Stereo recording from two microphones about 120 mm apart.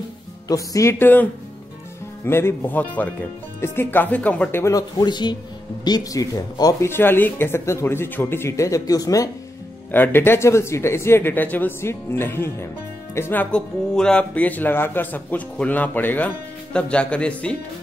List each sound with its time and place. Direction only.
0.5 s speech: 30° left (ahead or behind)
4.7 s speech: 35° left (ahead or behind)
6.9 s speech: 15° left (ahead or behind)
9.8 s speech: 15° left (ahead or behind)